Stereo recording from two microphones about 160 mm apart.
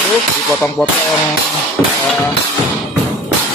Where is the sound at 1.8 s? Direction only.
15° left (ahead or behind).